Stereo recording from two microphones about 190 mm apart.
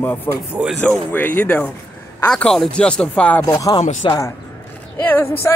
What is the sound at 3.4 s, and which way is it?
Speech, 20° left (ahead or behind).